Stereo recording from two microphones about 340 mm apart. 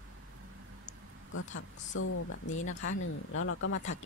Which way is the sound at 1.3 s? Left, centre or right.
Left.